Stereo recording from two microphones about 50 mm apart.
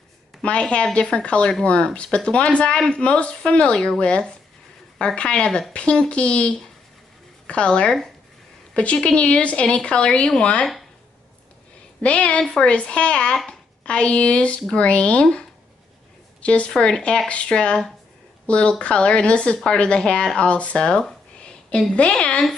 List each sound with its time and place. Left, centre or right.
0.4 s a woman's voice: left
12.0 s a woman's voice: left
16.4 s a woman's voice: left
16.7 s a woman's voice: centre
21.5 s a sound: left